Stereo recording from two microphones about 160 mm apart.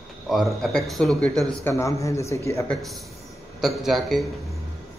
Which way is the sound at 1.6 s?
20° left (ahead or behind).